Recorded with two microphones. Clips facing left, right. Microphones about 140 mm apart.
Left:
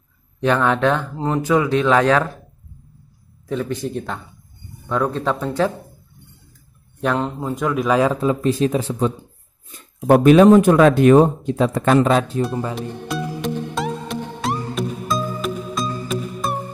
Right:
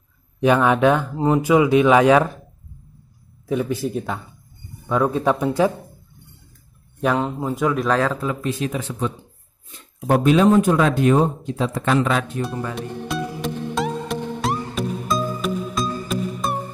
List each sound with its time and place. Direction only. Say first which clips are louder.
0.4 s speech: right 2 dB; 10° right (ahead or behind)
3.4 s speech: right 1 dB; 10° right (ahead or behind)
7.0 s speech: even; centre (ahead or behind)
8.1 s speech: left 5 dB; 25° left (ahead or behind)
8.4 s speech: left 6 dB; 35° left (ahead or behind)
10.0 s speech: left 5 dB; 60° left (ahead or behind); by 12.3 s 35° left (ahead or behind)
12.7 s music: left 1 dB; centre (ahead or behind)